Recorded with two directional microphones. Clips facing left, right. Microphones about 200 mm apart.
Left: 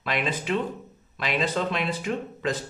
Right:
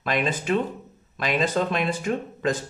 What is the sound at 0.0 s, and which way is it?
Speech, 45° right (ahead or behind).